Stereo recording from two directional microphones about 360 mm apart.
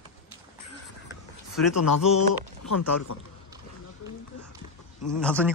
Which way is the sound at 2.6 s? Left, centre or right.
Left.